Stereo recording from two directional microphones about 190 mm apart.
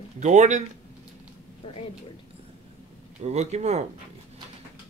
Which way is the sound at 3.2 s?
35° right (ahead or behind).